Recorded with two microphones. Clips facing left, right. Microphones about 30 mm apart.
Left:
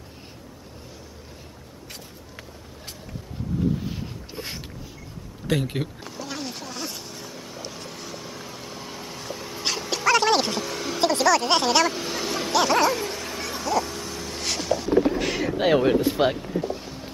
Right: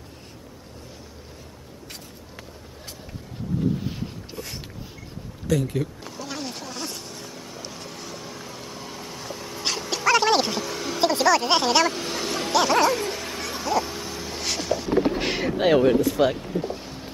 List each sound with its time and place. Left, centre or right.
3.8 s boat: centre
5.5 s speech: left
6.0 s vehicle: centre
15.0 s music: right
15.5 s speech: centre
16.3 s a sound: centre